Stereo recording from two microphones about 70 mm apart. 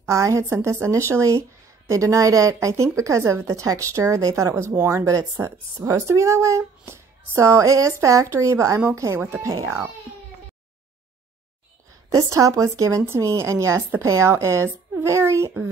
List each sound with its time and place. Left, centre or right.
0.0 s a woman's voice: right
12.1 s a woman's voice: right